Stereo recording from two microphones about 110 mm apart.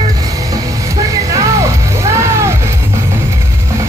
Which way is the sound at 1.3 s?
30° right (ahead or behind).